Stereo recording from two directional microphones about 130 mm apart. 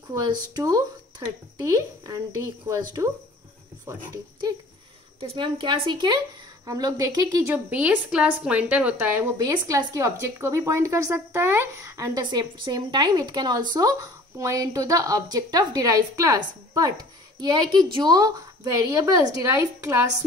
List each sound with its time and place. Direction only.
0.1 s a woman's voice: 25° right (ahead or behind)
5.2 s a woman's voice: 45° right (ahead or behind)
7.4 s a woman's voice: 10° right (ahead or behind)